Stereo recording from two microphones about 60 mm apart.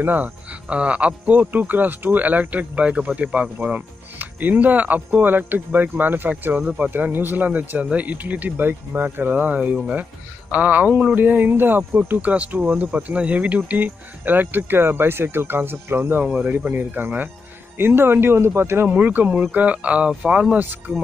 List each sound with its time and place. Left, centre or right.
0.0 s speech: right
16.3 s speech: right
18.9 s speech: right
20.5 s speech: right